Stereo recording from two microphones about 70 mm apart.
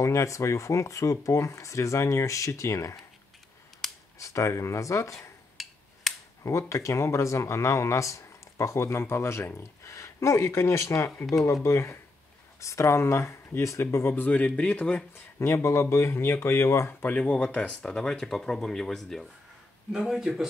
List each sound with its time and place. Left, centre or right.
0.0 s speech: left
3.8 s camera: centre
4.2 s speech: left
5.6 s finger snapping: centre
6.0 s a sound: centre
6.4 s speech: left; by 15.0 s centre
15.1 s speech: left
17.0 s speech: centre
19.9 s speech: centre